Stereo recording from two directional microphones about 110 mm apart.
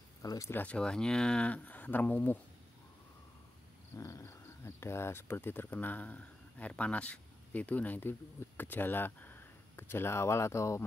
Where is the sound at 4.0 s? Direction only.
30° left (ahead or behind).